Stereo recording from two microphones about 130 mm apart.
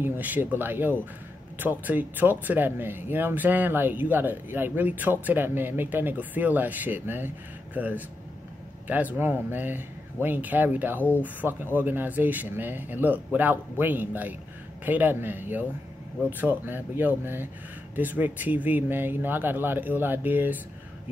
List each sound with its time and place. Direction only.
0.0 s speech: 15° right (ahead or behind)